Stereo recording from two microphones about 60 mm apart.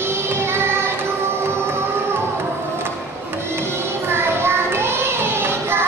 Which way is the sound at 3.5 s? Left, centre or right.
Right.